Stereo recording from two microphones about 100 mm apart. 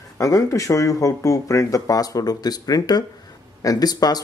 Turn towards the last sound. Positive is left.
turn(degrees=40)  # may be behind; listen again after turning